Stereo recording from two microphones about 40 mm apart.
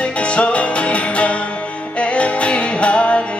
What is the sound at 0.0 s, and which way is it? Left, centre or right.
Music, left.